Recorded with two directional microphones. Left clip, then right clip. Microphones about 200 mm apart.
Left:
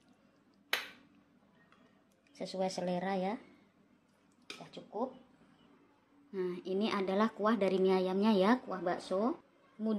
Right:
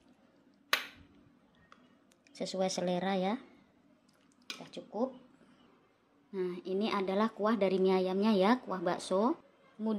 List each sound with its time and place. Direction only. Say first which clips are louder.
2.3 s speech: right 3 dB; 15° right (ahead or behind)
4.6 s speech: right 3 dB; 25° right (ahead or behind)
6.3 s a woman's voice: right 1 dB; 5° right (ahead or behind)
8.6 s speech: right 2 dB; 10° right (ahead or behind)